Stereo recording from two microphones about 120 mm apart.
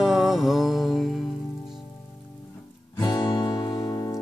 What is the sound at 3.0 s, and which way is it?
Music, 35° left (ahead or behind).